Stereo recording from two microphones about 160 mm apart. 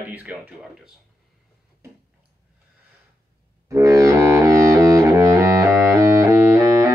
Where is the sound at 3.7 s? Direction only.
20° right (ahead or behind).